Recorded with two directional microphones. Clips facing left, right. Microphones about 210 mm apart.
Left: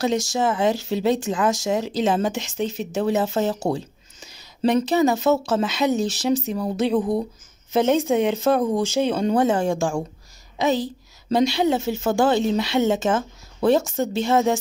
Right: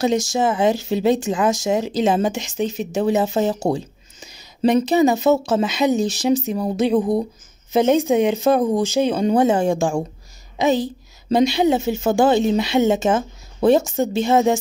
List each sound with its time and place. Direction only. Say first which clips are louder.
0.3 s a woman's voice: right 3 dB; 15° right (ahead or behind)